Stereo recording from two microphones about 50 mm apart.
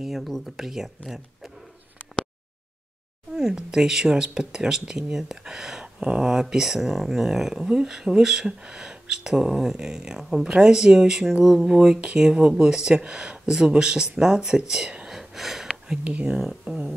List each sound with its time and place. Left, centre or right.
0.6 s speech: centre
3.3 s speech: centre
15.0 s gasp: centre
15.7 s speech: right
16.3 s speech: centre